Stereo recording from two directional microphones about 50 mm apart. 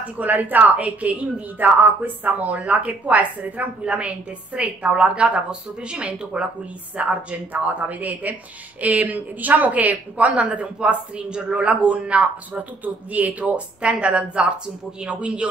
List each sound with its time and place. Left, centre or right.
0.2 s speech: right